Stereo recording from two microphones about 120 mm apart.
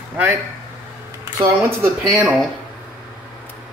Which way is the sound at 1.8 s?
25° right (ahead or behind).